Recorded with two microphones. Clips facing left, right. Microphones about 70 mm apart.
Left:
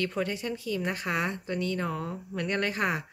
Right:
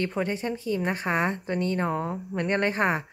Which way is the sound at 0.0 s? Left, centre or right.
Right.